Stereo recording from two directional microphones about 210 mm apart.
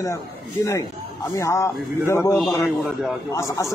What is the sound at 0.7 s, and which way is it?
Speech, 15° left (ahead or behind).